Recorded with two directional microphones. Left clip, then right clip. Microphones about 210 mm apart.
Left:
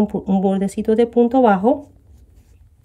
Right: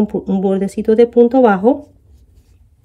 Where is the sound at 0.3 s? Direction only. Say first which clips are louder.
Right 2 dB; 15° left (ahead or behind).